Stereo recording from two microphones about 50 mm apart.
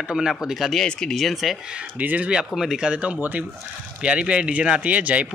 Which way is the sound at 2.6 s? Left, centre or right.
Centre.